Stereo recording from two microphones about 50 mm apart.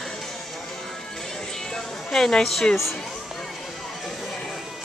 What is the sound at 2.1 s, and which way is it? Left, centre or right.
Speech, centre.